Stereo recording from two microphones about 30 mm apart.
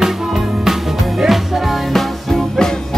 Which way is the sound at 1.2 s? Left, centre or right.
Centre.